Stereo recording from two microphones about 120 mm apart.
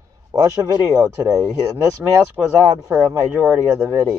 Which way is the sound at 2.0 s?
15° right (ahead or behind).